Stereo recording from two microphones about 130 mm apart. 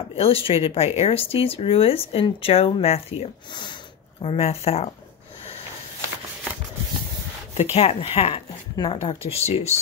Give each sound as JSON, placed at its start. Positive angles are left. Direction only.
{"t": 0.1, "sound": "speech", "side_deg": 45}
{"t": 7.7, "sound": "speech", "side_deg": 50}
{"t": 8.7, "sound": "speech", "side_deg": 30}
{"t": 9.0, "sound": "speech", "side_deg": 50}